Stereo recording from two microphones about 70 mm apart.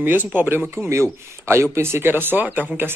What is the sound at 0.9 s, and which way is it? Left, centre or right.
Speech, right.